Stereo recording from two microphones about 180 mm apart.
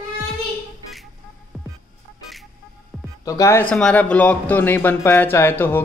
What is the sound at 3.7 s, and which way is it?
Speech, 5° left (ahead or behind).